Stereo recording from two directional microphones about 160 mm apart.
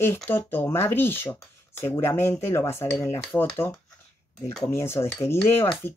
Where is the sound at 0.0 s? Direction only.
15° left (ahead or behind).